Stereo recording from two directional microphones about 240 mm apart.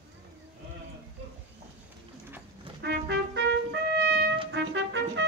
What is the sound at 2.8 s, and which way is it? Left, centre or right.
Music, right.